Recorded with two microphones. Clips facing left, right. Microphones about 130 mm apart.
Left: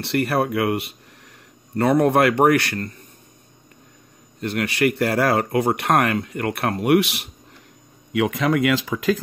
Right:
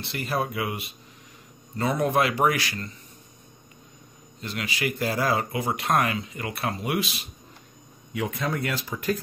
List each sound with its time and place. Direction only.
0.0 s speech: 65° left (ahead or behind)
4.4 s speech: 60° left (ahead or behind)
8.1 s speech: 85° left